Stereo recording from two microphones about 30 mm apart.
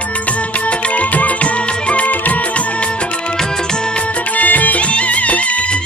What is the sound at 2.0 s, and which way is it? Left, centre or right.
Music, left.